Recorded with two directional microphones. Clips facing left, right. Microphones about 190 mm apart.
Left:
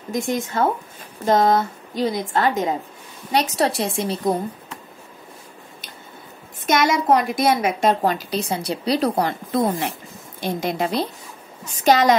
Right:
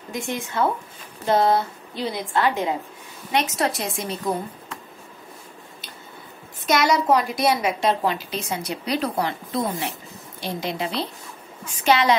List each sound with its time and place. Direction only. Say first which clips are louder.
0.1 s a woman's voice: left 5 dB; 40° left (ahead or behind)
6.6 s a woman's voice: left 1 dB; 50° left (ahead or behind)